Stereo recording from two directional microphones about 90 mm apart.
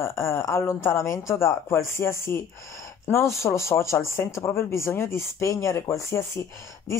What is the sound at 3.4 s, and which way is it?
Speech, 30° left (ahead or behind).